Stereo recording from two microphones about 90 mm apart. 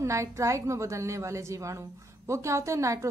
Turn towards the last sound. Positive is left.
turn(degrees=-35)  # may be behind; listen again after turning